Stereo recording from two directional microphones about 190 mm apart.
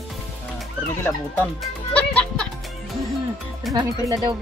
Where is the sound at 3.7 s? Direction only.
20° right (ahead or behind).